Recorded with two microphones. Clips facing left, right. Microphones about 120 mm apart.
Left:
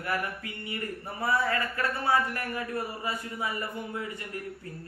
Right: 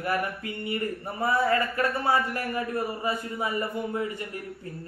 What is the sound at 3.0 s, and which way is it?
Speech, 30° right (ahead or behind).